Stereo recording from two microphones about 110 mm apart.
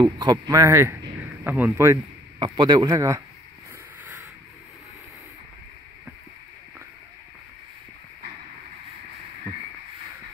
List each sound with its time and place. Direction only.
0.0 s speech: 40° right (ahead or behind)
0.5 s speech: 25° right (ahead or behind)
2.3 s speech: 45° right (ahead or behind)
4.0 s rub: 15° right (ahead or behind)